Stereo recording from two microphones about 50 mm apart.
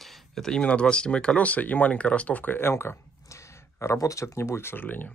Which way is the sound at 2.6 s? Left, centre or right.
Left.